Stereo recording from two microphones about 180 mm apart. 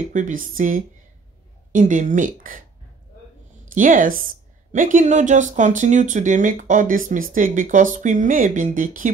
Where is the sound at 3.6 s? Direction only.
45° right (ahead or behind).